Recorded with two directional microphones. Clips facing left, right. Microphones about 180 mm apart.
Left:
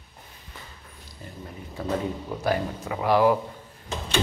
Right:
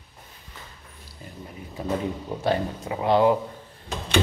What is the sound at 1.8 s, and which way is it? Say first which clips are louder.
A man's voice: even; 15° right (ahead or behind).